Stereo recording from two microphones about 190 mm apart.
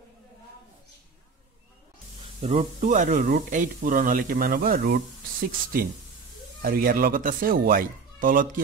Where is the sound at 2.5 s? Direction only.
40° right (ahead or behind); by 5.0 s 55° right (ahead or behind).